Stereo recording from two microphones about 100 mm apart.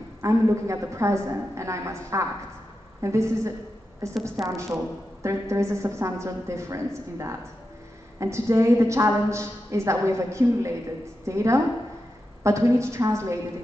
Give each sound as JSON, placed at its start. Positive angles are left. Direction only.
{"t": 0.2, "sound": "a woman's voice", "side_deg": -30}